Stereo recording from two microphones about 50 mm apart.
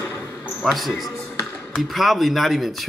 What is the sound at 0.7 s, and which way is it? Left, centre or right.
Speech, centre.